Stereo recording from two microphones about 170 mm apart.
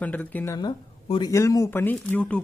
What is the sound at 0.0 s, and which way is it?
Speech, 10° left (ahead or behind).